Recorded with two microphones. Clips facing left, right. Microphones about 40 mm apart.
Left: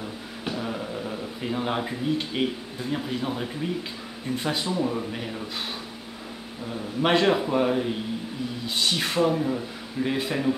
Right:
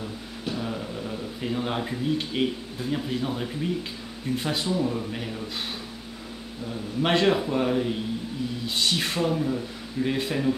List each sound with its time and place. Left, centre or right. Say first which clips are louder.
0.5 s speech: left 1 dB; centre
6.6 s speech: left 1 dB; centre
9.3 s speech: left 1 dB; centre
10.0 s speech: even; centre